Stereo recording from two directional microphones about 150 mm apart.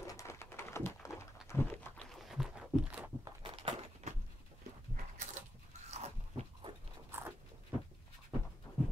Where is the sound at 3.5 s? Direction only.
40° right (ahead or behind).